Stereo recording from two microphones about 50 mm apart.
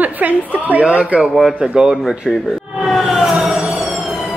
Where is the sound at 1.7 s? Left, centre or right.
Centre.